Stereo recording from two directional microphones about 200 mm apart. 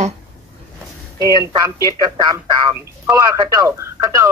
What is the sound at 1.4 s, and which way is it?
Speech, 20° right (ahead or behind).